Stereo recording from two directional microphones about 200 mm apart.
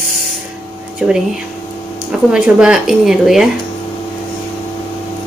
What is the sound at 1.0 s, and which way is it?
Speech, 5° right (ahead or behind).